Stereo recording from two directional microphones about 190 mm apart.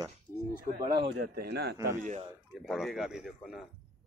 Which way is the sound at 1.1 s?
60° right (ahead or behind).